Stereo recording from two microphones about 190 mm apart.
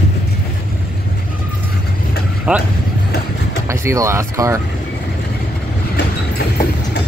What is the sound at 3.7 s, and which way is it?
Speech, 15° right (ahead or behind).